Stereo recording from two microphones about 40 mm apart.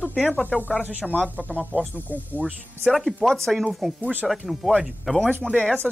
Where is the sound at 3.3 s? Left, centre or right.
Centre.